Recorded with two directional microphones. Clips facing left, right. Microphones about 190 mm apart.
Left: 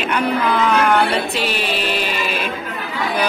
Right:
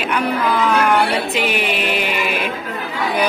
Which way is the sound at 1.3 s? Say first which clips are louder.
Right 2 dB; 15° right (ahead or behind).